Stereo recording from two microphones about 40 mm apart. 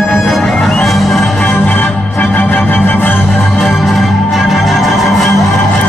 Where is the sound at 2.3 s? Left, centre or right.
Left.